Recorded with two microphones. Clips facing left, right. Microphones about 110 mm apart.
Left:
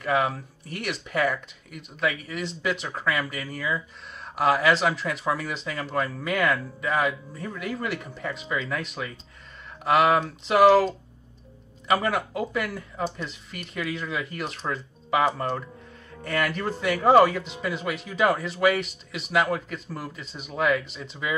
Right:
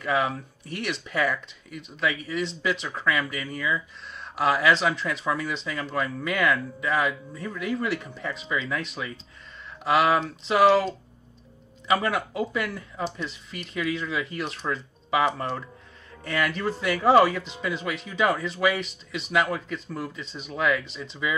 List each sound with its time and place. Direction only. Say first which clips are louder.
0.0 s speech: left 1 dB; centre (ahead or behind)
11.9 s speech: even; centre (ahead or behind)